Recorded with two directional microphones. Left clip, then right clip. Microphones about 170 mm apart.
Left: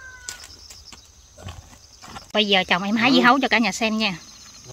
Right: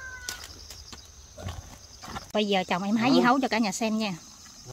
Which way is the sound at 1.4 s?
15° left (ahead or behind).